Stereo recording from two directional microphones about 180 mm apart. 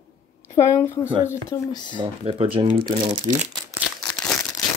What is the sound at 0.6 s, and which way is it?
Speech, 15° left (ahead or behind).